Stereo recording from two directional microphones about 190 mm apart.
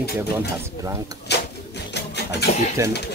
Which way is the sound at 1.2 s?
60° left (ahead or behind).